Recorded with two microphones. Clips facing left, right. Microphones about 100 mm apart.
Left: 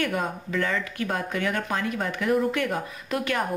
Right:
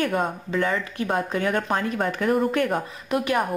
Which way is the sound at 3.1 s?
20° right (ahead or behind).